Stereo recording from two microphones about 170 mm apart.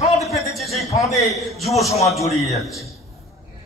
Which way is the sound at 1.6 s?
20° left (ahead or behind).